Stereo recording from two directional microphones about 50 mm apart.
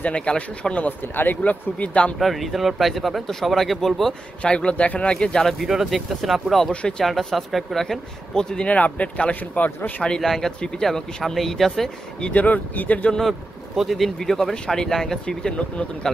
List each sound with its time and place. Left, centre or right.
0.0 s speech: left
0.8 s speech: left
2.1 s speech: centre
4.4 s speech: left
5.4 s speech: centre
6.7 s speech: left
7.1 s speech: centre
8.6 s speech: left
10.0 s speech: centre
12.2 s speech: left
13.2 s speech: centre
15.2 s speech: left